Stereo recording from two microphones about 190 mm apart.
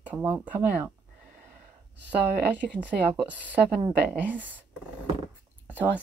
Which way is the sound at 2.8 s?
5° right (ahead or behind).